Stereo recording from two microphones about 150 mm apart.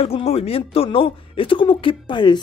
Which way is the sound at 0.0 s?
40° left (ahead or behind).